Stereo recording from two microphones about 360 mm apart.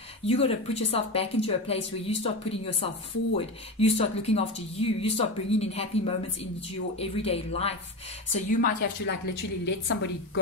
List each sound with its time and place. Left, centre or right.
0.3 s speech: centre
3.3 s a woman's voice: centre; by 10.4 s left